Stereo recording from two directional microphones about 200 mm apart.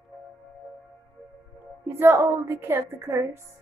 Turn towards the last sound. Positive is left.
turn(degrees=-15)  # may be behind; listen again after turning